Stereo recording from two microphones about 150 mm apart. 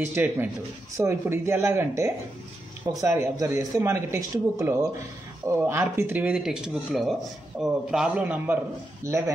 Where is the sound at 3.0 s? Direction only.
20° right (ahead or behind).